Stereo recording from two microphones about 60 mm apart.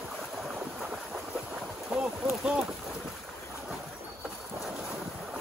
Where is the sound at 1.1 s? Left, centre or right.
Right.